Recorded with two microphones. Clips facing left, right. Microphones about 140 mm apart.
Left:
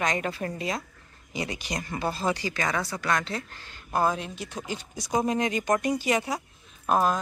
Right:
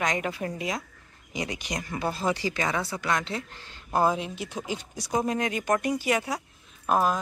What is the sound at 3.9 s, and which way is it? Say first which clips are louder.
Speech: right 1 dB; 10° right (ahead or behind).